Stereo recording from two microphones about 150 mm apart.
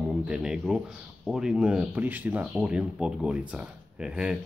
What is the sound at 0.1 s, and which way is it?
Speech, 5° right (ahead or behind).